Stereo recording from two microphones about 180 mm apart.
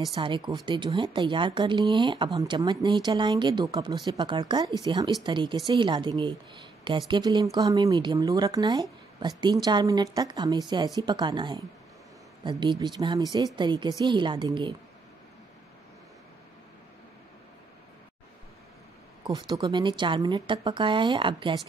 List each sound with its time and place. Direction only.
0.1 s speech: 25° right (ahead or behind)
19.2 s speech: 25° right (ahead or behind)